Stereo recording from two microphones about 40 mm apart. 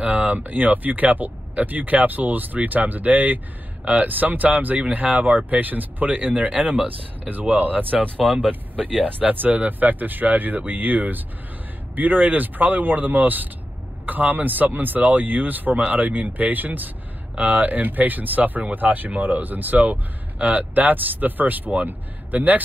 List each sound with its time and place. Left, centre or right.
0.0 s speech: right
3.8 s speech: right
4.1 s speech: right
5.6 s speech: right
8.2 s speech: right